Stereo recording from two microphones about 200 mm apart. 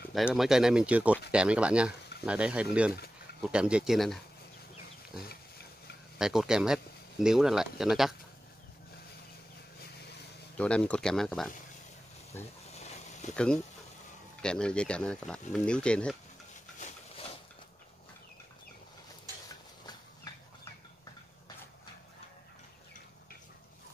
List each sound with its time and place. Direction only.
0.1 s speech: centre (ahead or behind)
6.1 s speech: 5° right (ahead or behind)
10.6 s speech: 5° left (ahead or behind)
12.7 s a sound: 35° left (ahead or behind)
13.3 s speech: 5° left (ahead or behind)
16.8 s a sound: 30° left (ahead or behind)